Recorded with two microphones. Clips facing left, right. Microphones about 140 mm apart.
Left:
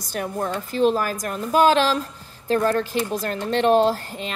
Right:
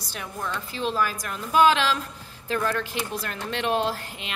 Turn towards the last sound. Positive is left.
turn(degrees=40)  # may be behind; listen again after turning